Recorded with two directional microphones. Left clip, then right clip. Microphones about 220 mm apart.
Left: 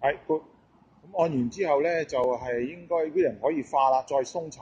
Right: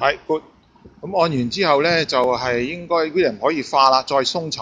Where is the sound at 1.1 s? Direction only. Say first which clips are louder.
Right 7 dB; 10° right (ahead or behind).